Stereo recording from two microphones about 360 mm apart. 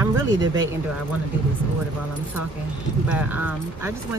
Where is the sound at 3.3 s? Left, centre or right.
Centre.